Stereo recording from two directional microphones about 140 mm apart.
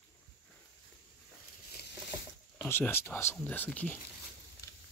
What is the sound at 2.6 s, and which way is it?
Speech, 15° left (ahead or behind).